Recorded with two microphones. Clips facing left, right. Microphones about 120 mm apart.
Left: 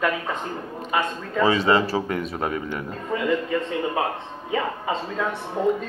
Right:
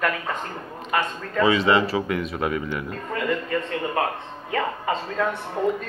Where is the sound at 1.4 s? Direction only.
35° left (ahead or behind).